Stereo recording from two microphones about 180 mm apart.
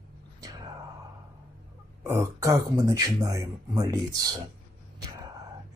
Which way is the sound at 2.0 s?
15° right (ahead or behind).